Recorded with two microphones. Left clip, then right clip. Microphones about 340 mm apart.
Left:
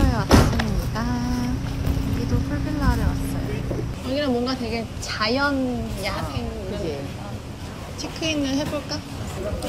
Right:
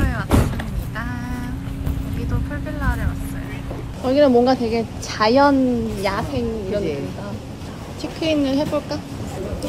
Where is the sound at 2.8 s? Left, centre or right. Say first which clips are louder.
Even; centre.